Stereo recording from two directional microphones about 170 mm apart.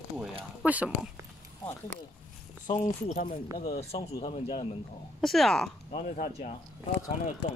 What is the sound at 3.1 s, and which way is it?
Speech, 55° left (ahead or behind).